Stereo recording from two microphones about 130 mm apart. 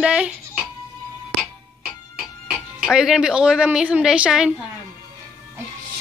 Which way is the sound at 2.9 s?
5° right (ahead or behind).